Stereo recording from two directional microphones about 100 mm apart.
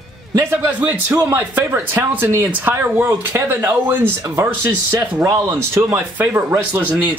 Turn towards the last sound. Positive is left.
turn(degrees=-25)  # may be behind; listen again after turning